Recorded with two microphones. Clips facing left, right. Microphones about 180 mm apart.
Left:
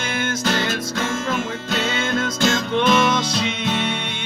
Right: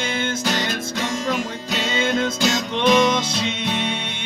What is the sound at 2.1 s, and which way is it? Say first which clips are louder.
Music: right 1 dB; 20° right (ahead or behind).